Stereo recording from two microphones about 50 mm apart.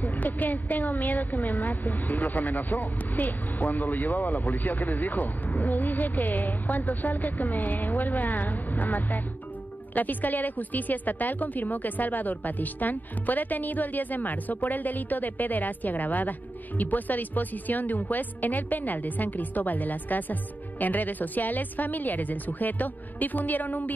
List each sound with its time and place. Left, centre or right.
0.0 s a woman's voice: left